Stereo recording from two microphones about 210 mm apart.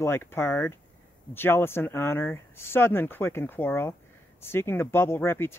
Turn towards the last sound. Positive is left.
turn(degrees=10)  # may be behind; listen again after turning